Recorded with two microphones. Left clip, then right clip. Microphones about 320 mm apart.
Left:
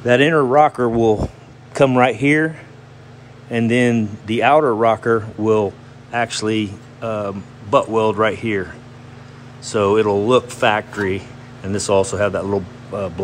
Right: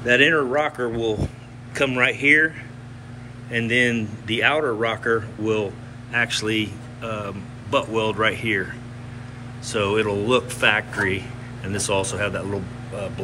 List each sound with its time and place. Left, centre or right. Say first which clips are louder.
0.0 s speech: left 3 dB; centre
9.7 s speech: left 6 dB; centre